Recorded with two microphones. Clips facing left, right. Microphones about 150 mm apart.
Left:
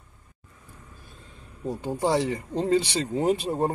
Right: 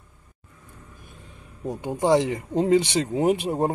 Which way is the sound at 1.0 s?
15° right (ahead or behind).